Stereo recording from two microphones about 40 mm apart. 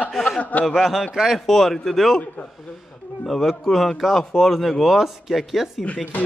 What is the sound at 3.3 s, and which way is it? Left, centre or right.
Speech, centre.